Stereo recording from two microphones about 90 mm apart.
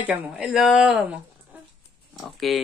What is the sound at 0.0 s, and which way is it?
Speech, 10° right (ahead or behind).